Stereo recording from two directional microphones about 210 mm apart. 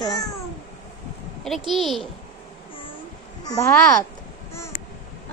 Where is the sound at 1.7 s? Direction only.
Centre (ahead or behind).